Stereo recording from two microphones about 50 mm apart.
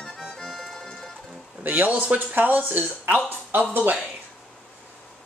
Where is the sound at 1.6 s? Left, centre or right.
Right.